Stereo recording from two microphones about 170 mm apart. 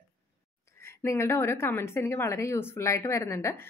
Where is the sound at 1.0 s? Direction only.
15° left (ahead or behind).